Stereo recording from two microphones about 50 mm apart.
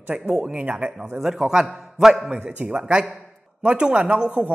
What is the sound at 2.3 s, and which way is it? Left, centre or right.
A man's voice, right.